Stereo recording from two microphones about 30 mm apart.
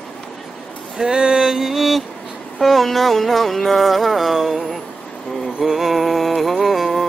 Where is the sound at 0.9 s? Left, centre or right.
Right.